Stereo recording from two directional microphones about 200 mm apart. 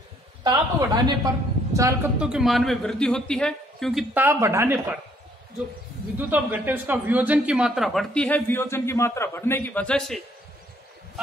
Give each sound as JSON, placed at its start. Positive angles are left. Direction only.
{"t": 0.4, "sound": "a woman's voice", "side_deg": -20}
{"t": 2.1, "sound": "a man's voice", "side_deg": -5}
{"t": 4.1, "sound": "speech", "side_deg": -10}
{"t": 6.1, "sound": "a man's voice", "side_deg": -10}